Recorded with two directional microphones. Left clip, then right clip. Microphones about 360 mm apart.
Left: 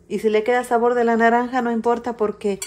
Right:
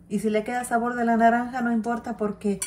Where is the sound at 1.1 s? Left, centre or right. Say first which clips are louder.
Left 4 dB; left.